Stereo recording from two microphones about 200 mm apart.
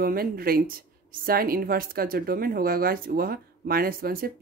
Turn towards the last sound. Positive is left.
turn(degrees=-45)  # may be behind; listen again after turning